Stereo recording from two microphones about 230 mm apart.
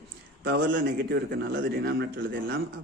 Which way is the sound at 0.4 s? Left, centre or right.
Right.